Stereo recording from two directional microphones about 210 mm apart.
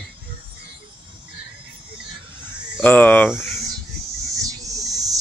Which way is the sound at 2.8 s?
10° left (ahead or behind).